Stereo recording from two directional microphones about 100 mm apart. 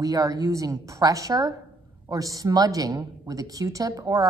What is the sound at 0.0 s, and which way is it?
A woman's voice, 40° right (ahead or behind).